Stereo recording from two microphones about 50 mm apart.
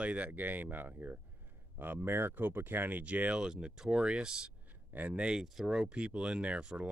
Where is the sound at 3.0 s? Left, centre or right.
Right.